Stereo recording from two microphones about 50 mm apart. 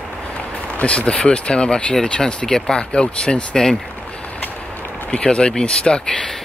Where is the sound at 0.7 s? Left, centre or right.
Left.